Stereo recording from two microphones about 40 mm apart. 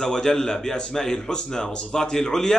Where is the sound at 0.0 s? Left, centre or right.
Centre.